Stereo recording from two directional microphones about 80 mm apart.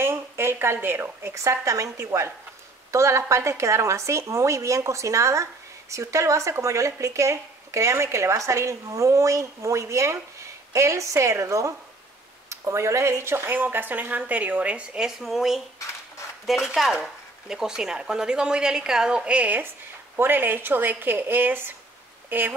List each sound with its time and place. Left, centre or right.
0.0 s a woman's voice: right